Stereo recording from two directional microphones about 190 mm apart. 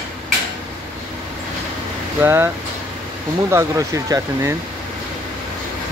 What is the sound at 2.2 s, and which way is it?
Speech, 15° right (ahead or behind).